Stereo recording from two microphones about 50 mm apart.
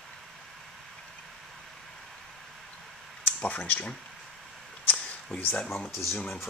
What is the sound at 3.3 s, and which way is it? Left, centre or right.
Speech, left.